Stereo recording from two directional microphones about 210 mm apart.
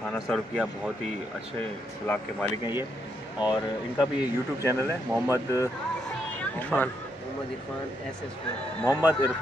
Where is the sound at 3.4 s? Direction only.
20° left (ahead or behind).